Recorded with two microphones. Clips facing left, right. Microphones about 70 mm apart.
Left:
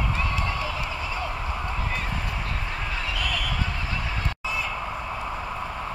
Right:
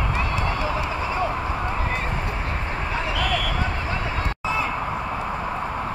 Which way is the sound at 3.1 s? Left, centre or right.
Right.